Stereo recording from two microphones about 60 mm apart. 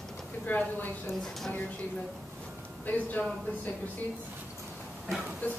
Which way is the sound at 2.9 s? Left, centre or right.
Left.